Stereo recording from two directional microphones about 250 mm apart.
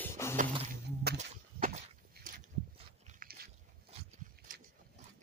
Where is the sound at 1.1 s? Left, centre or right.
Right.